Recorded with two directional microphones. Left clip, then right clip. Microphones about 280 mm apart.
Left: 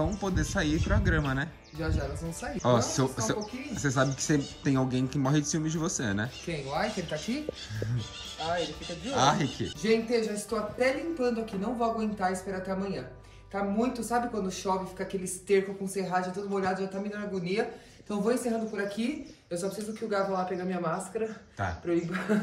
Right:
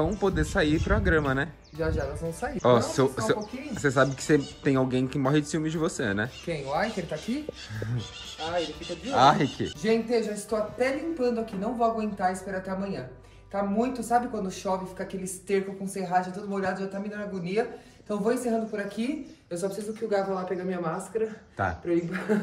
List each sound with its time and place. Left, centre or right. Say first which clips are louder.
0.0 s speech: right 5 dB; centre
1.8 s speech: right 5 dB; centre
2.6 s speech: right 4 dB; centre
6.4 s speech: right 2 dB; centre
8.4 s speech: right 1 dB; left
9.1 s speech: right 5 dB; centre